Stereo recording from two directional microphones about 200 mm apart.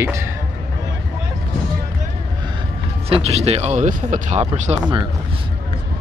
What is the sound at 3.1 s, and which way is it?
Speech, 30° right (ahead or behind).